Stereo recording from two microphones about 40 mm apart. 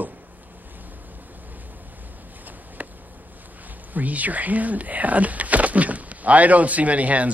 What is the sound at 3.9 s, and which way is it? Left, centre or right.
Speech, right.